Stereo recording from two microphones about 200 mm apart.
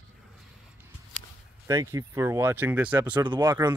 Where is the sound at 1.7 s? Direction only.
15° right (ahead or behind).